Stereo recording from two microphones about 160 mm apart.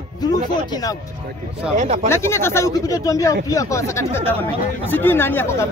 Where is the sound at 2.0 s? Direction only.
15° left (ahead or behind).